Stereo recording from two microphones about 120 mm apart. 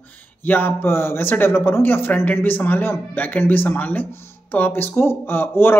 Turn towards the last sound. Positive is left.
turn(degrees=20)  # may be behind; listen again after turning